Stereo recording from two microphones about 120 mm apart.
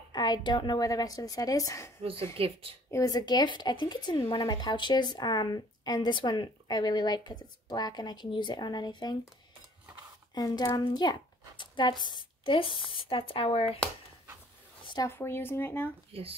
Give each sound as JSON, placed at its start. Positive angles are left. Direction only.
{"t": 0.1, "sound": "speech", "side_deg": 40}
{"t": 2.3, "sound": "a woman's voice", "side_deg": -55}
{"t": 2.9, "sound": "speech", "side_deg": 30}
{"t": 10.3, "sound": "a woman's voice", "side_deg": 35}
{"t": 15.0, "sound": "speech", "side_deg": 20}
{"t": 16.1, "sound": "speech", "side_deg": -55}